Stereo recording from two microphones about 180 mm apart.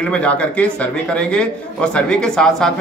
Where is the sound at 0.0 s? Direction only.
5° left (ahead or behind).